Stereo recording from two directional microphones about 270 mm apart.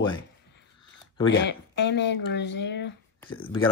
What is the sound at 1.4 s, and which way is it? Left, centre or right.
Speech, left.